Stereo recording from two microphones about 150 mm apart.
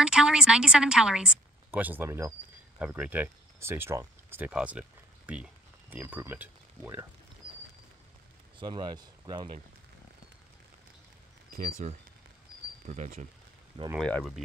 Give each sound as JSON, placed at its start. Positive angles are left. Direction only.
{"t": 0.0, "sound": "a woman's voice", "side_deg": -5}
{"t": 8.5, "sound": "speech", "side_deg": -30}
{"t": 11.5, "sound": "speech", "side_deg": -60}
{"t": 13.9, "sound": "a woman's voice", "side_deg": 5}